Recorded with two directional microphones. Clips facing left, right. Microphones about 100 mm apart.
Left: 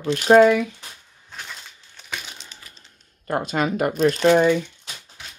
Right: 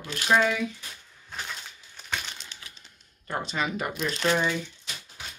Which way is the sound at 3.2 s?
45° left (ahead or behind).